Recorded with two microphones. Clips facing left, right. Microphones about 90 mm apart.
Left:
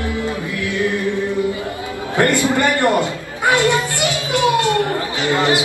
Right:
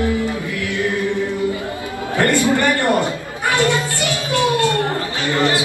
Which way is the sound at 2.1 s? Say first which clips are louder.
Even; 20° left (ahead or behind).